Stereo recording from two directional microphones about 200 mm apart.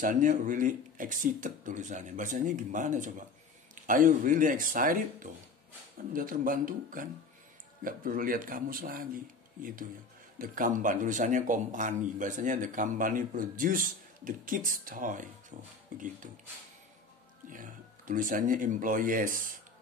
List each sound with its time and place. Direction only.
0.0 s speech: 40° right (ahead or behind)
17.5 s speech: 40° right (ahead or behind)